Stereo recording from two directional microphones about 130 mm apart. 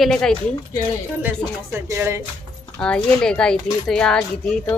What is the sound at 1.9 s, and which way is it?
Speech, 20° right (ahead or behind).